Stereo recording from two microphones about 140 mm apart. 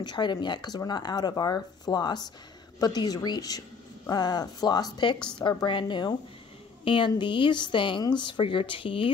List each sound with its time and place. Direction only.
0.0 s a woman's voice: 30° left (ahead or behind)